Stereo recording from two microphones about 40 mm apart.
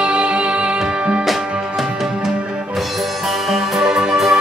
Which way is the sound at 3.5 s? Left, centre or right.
Centre.